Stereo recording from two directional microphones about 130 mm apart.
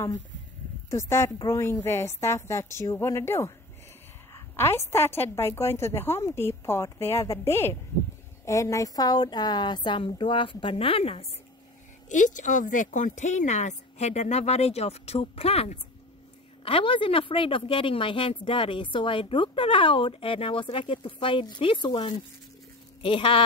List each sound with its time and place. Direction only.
0.8 s a woman's voice: 20° left (ahead or behind); by 11.2 s 50° left (ahead or behind)
12.1 s speech: 75° left (ahead or behind); by 23.4 s 45° left (ahead or behind)